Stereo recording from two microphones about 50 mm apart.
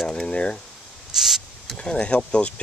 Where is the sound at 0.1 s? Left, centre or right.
Left.